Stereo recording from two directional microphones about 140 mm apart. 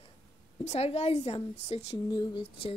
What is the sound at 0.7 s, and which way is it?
A woman's voice, 50° left (ahead or behind).